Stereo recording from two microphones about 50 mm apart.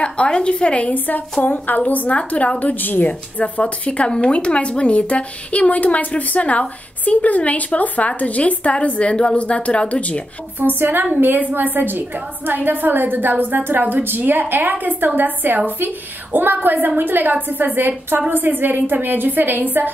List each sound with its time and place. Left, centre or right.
0.0 s a woman's voice: left
10.6 s a woman's voice: right